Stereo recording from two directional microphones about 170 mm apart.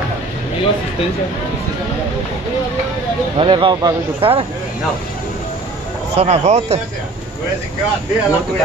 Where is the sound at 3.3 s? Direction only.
30° right (ahead or behind).